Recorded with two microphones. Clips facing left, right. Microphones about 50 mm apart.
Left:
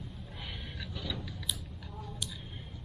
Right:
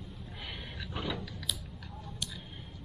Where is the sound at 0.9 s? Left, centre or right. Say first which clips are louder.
Right 5 dB; right.